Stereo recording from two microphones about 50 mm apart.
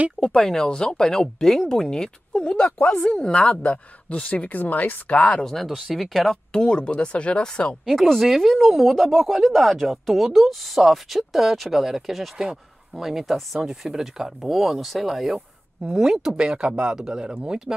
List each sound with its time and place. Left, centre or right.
0.3 s speech: centre; by 5.2 s left
5.2 s speech: centre
6.5 s speech: centre
7.8 s speech: centre